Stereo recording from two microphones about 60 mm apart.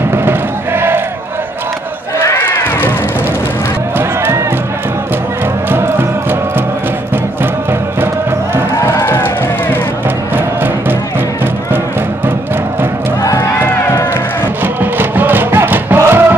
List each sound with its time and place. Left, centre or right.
0.1 s music: right
2.2 s a sound: left
5.7 s music: right
9.0 s music: left
10.3 s music: right
14.6 s music: right